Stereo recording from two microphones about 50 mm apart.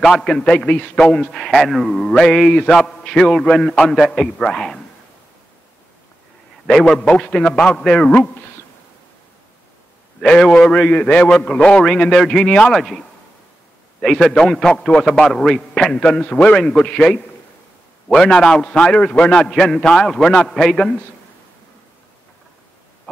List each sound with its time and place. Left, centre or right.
0.0 s a man's voice: centre
1.3 s a man's voice: centre
6.7 s a man's voice: centre
10.2 s a man's voice: centre
11.2 s a man's voice: centre
12.7 s speech: centre
14.0 s a man's voice: centre